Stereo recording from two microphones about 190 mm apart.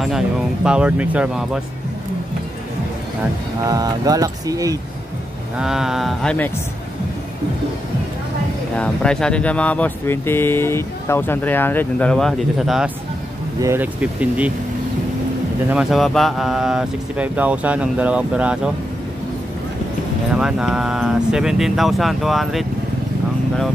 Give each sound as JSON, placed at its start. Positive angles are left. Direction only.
{"t": 0.7, "sound": "speech", "side_deg": -5}
{"t": 3.6, "sound": "speech", "side_deg": -20}
{"t": 5.6, "sound": "speech", "side_deg": 0}
{"t": 8.7, "sound": "speech", "side_deg": 5}
{"t": 15.7, "sound": "speech", "side_deg": 0}
{"t": 20.3, "sound": "speech", "side_deg": -5}